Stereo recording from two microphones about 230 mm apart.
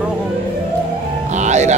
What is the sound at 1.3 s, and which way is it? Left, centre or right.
Music, right.